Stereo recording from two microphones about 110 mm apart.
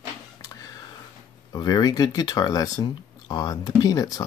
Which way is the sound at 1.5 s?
35° left (ahead or behind).